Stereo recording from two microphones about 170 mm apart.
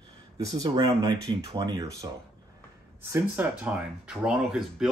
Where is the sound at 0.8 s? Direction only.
20° right (ahead or behind).